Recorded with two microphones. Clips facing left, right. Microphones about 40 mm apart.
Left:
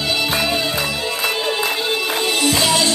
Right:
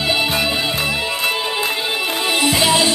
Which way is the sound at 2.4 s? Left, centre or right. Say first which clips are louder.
Right 2 dB; centre.